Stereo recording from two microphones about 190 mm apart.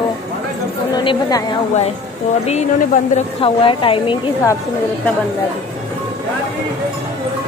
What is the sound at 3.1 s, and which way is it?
A woman's voice, 30° left (ahead or behind).